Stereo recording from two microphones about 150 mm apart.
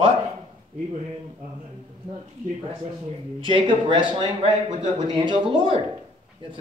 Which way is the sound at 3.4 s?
35° right (ahead or behind).